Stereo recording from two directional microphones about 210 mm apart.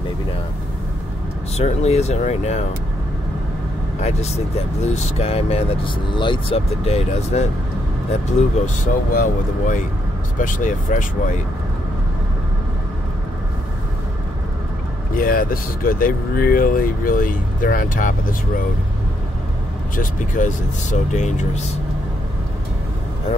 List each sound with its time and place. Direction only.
1.6 s speech: 30° left (ahead or behind)
4.0 s speech: 30° left (ahead or behind)
15.1 s speech: 40° left (ahead or behind)
20.0 s speech: 35° left (ahead or behind)